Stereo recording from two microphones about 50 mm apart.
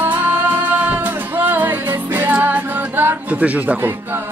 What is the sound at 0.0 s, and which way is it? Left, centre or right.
Music, right.